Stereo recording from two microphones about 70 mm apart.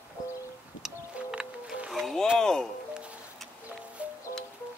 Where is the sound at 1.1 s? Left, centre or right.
Centre.